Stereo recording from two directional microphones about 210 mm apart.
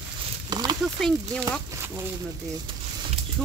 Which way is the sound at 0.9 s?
5° left (ahead or behind).